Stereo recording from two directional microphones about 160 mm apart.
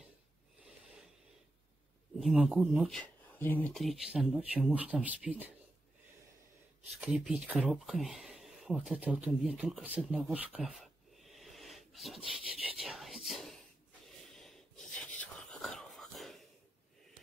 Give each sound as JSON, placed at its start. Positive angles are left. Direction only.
{"t": 2.1, "sound": "speech", "side_deg": -5}
{"t": 3.3, "sound": "speech", "side_deg": 10}
{"t": 3.7, "sound": "speech", "side_deg": 0}
{"t": 7.0, "sound": "speech", "side_deg": -5}
{"t": 12.7, "sound": "a sound", "side_deg": 0}
{"t": 14.3, "sound": "whispering", "side_deg": 5}